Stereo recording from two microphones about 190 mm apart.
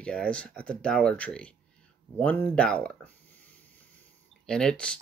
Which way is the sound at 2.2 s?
10° left (ahead or behind).